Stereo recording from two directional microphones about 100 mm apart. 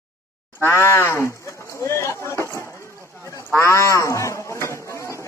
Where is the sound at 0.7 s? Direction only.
25° left (ahead or behind).